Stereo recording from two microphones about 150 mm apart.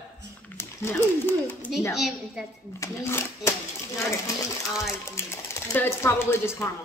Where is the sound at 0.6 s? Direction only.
15° left (ahead or behind).